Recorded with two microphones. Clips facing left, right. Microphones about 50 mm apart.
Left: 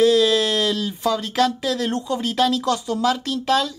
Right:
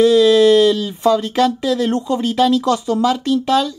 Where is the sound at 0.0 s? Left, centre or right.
Centre.